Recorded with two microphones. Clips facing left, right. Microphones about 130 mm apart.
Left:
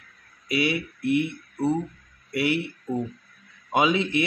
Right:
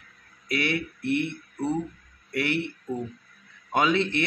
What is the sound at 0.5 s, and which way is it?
Speech, 10° left (ahead or behind).